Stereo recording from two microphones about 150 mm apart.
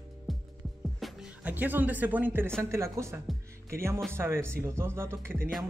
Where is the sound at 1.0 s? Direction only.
Centre (ahead or behind).